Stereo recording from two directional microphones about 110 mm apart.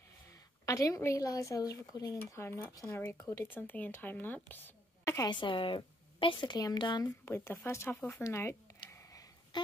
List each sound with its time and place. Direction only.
0.7 s speech: 30° left (ahead or behind)
5.3 s speech: 50° left (ahead or behind)
7.2 s speech: 20° left (ahead or behind)